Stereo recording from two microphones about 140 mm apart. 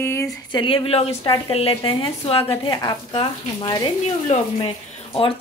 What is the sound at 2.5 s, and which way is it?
A woman's voice, 30° left (ahead or behind).